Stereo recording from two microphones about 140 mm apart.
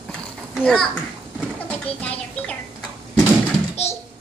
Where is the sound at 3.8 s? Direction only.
50° left (ahead or behind).